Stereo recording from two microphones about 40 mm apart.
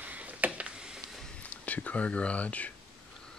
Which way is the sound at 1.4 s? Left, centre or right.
Left.